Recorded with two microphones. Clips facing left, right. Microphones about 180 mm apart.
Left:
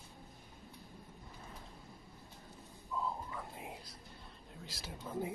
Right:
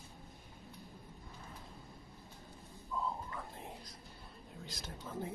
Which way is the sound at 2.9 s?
Centre (ahead or behind).